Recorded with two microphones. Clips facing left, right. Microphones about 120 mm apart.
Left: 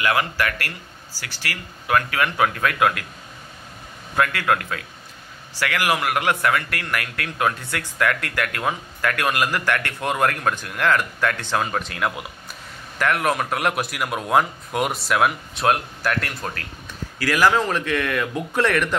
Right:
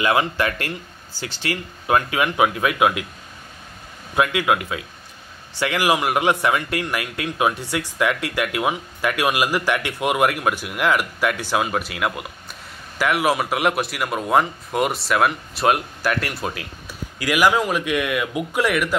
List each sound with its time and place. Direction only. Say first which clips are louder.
0.0 s speech: right 2 dB; 20° right (ahead or behind)
4.1 s a man's voice: right 2 dB; 15° right (ahead or behind)